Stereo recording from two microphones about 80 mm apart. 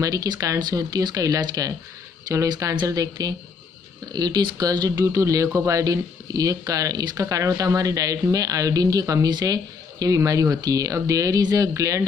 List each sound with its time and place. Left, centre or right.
0.0 s speech: right